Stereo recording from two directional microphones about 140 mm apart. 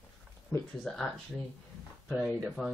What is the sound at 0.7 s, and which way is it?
Speech, centre (ahead or behind).